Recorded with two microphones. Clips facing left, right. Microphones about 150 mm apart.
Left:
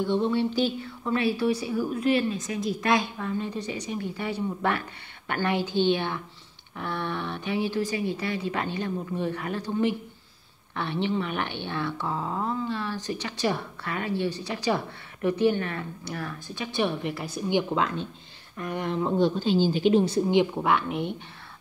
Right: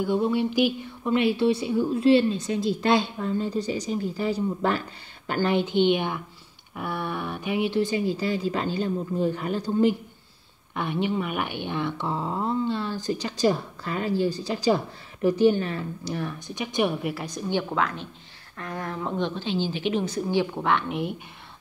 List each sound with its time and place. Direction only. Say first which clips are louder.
0.0 s a woman's voice: right 1 dB; 10° right (ahead or behind); by 9.9 s 30° right (ahead or behind)
10.7 s speech: right 1 dB; 10° right (ahead or behind)
12.4 s a woman's voice: right 3 dB; 30° right (ahead or behind); by 19.1 s 20° left (ahead or behind)
19.1 s speech: left 5 dB; 40° left (ahead or behind)
20.5 s speech: even; 5° left (ahead or behind)